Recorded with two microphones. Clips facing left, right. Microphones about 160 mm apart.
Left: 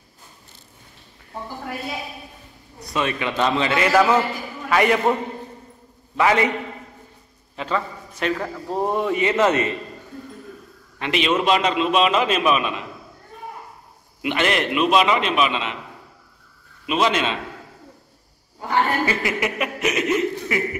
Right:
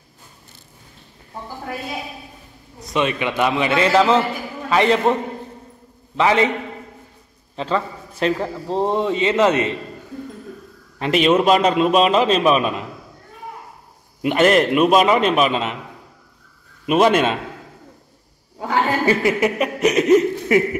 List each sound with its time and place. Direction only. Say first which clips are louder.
2.8 s a man's voice: right 3 dB; 20° right (ahead or behind)
6.1 s a man's voice: right 2 dB; 20° right (ahead or behind)
7.5 s a man's voice: right 3 dB; 30° right (ahead or behind)
11.0 s a man's voice: right 5 dB; 45° right (ahead or behind)
14.2 s a man's voice: right 7 dB; 45° right (ahead or behind)
16.8 s a man's voice: right 6 dB; 50° right (ahead or behind)
19.0 s speech: right 6 dB; 40° right (ahead or behind)